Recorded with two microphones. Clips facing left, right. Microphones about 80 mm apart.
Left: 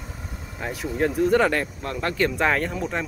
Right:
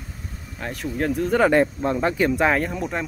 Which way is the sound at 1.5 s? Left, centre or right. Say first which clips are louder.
Right 8 dB; right.